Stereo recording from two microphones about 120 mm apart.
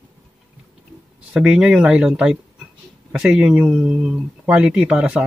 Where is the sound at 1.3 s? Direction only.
10° right (ahead or behind).